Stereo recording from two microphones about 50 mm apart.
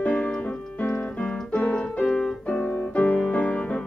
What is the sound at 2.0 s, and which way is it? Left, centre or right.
Keyboard, centre.